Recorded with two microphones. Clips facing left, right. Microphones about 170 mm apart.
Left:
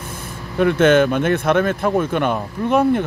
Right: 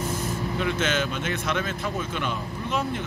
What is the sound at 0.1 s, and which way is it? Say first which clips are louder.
Speech: right 3 dB; 55° left (ahead or behind).